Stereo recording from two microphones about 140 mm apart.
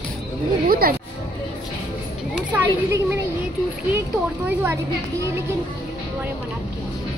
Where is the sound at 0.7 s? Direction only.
90° right.